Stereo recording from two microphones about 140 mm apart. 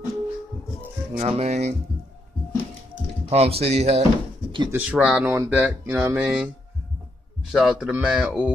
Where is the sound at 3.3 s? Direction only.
45° right (ahead or behind).